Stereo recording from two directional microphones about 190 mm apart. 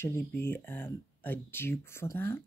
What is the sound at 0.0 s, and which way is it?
Speech, 10° left (ahead or behind).